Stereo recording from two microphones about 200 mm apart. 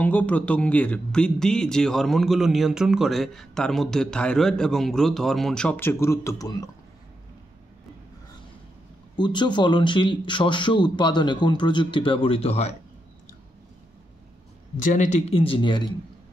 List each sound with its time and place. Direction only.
0.0 s speech: 10° left (ahead or behind)
9.1 s speech: 20° left (ahead or behind)
14.8 s speech: 40° left (ahead or behind); by 15.9 s 25° left (ahead or behind)